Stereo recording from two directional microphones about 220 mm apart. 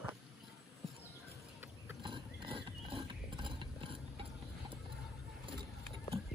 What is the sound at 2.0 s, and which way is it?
Horse, 20° right (ahead or behind).